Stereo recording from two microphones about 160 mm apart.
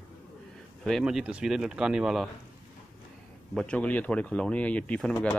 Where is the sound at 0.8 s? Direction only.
Centre (ahead or behind).